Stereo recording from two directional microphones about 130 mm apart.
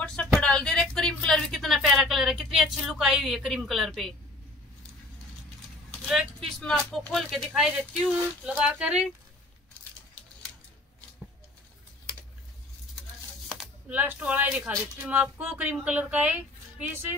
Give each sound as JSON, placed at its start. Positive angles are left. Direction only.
{"t": 0.0, "sound": "a sound", "side_deg": 5}
{"t": 5.9, "sound": "speech", "side_deg": 0}
{"t": 13.8, "sound": "speech", "side_deg": -10}